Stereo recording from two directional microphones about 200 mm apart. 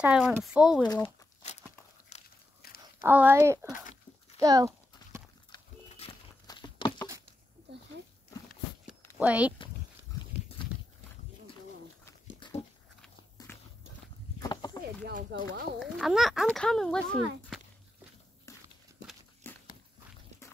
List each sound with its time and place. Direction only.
0.0 s speech: 5° right (ahead or behind)
1.0 s a sound: 35° left (ahead or behind)
2.1 s biting: 35° left (ahead or behind)
2.6 s a sound: 50° left (ahead or behind)
3.0 s speech: 10° right (ahead or behind)
5.5 s a sound: 25° left (ahead or behind)
9.2 s speech: 5° right (ahead or behind)
10.6 s walk: 25° left (ahead or behind)
12.0 s dog: 20° left (ahead or behind)
13.5 s walk: 10° left (ahead or behind)
14.4 s a sound: 20° left (ahead or behind)
15.0 s speech: 50° right (ahead or behind)
15.8 s speech: centre (ahead or behind)
18.5 s walk: 15° left (ahead or behind)